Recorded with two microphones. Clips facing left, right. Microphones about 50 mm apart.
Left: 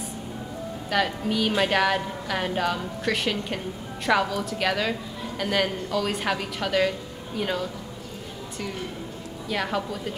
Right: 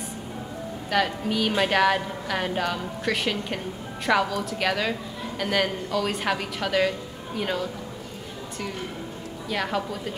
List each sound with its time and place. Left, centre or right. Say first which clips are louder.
0.8 s a woman's voice: right 1 dB; centre
9.5 s a woman's voice: even; centre